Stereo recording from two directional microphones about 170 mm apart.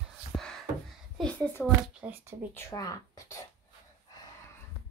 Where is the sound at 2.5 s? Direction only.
15° left (ahead or behind).